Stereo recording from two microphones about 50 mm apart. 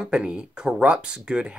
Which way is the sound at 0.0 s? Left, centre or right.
Right.